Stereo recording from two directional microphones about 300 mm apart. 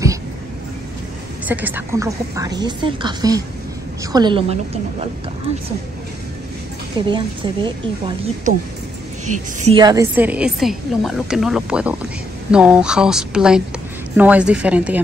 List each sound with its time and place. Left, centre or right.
1.5 s a woman's voice: centre
7.1 s a woman's voice: centre
9.2 s a woman's voice: right; by 15.0 s centre